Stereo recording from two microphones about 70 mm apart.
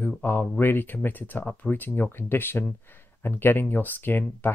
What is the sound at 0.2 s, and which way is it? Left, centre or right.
Speech, left.